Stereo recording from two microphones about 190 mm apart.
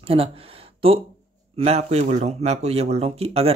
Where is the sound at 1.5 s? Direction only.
35° right (ahead or behind).